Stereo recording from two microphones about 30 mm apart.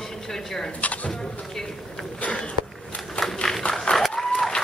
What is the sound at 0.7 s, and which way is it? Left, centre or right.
Speech, left.